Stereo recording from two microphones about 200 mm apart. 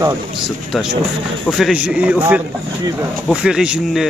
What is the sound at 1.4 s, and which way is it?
Speech, centre (ahead or behind).